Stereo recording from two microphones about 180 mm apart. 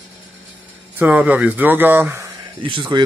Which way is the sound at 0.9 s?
10° right (ahead or behind).